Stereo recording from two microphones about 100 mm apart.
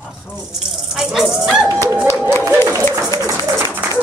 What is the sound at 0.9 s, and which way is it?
Speech, centre (ahead or behind).